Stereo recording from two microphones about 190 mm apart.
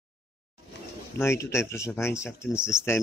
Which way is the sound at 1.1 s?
15° left (ahead or behind).